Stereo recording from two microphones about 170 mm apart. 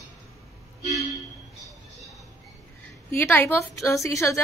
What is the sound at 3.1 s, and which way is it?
A woman's voice, 10° left (ahead or behind).